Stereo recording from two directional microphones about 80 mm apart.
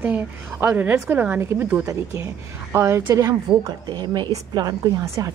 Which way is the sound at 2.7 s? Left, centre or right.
Right.